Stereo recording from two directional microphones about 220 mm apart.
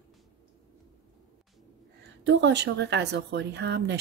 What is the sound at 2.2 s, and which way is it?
Speech, 55° right (ahead or behind).